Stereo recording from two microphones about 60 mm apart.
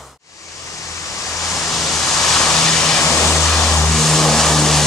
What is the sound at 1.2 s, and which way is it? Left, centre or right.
Waves, left.